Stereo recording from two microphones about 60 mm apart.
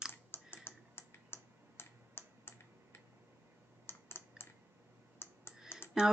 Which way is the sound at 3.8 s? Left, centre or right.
Left.